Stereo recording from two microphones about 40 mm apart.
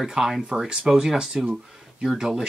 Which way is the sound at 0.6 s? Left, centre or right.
Centre.